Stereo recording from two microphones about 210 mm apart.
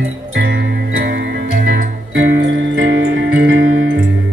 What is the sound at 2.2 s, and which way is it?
Music, 60° right (ahead or behind).